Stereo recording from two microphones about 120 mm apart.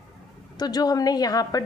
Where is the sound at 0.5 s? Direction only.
35° left (ahead or behind).